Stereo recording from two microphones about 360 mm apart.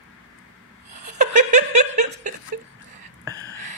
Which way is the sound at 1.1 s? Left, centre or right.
Centre.